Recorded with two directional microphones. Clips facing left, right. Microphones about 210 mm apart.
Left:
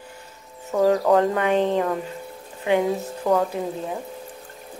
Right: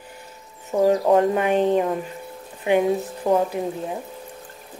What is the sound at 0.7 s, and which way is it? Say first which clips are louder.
Speech: right 1 dB; 20° right (ahead or behind).